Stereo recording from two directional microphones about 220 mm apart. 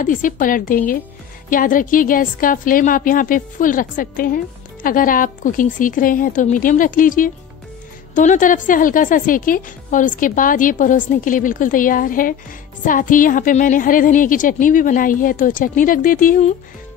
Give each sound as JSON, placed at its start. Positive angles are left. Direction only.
{"t": 0.0, "sound": "a woman's voice", "side_deg": 35}